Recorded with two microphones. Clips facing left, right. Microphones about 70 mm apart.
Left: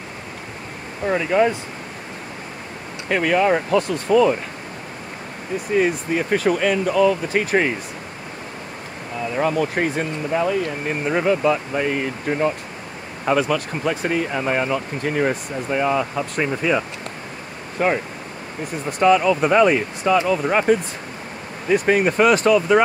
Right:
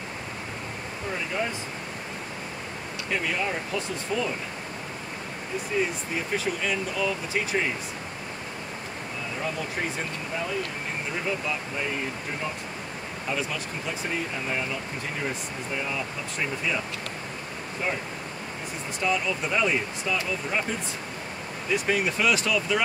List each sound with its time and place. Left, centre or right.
1.0 s speech: left
3.1 s speech: left
5.7 s speech: left
9.3 s speech: left
18.9 s speech: left
21.6 s speech: left